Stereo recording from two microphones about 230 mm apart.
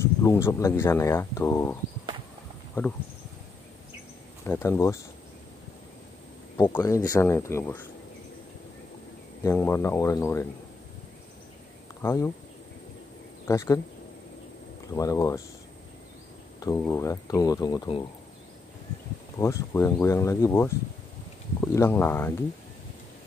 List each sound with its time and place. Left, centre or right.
0.2 s speech: centre
4.5 s speech: centre
6.5 s speech: centre
9.4 s speech: centre
12.0 s speech: centre
13.5 s speech: centre
15.0 s speech: centre
16.5 s speech: centre
19.3 s speech: centre